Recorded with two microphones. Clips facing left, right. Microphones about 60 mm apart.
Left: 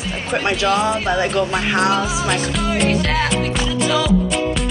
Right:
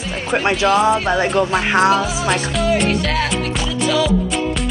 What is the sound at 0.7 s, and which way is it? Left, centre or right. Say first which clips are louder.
Speech: right 3 dB; centre.